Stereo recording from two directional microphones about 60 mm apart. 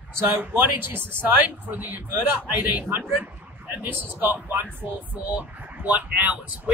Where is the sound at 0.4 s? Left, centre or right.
Right.